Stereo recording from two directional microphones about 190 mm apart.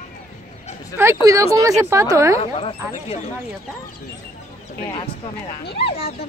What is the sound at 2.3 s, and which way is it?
Speech, 30° left (ahead or behind).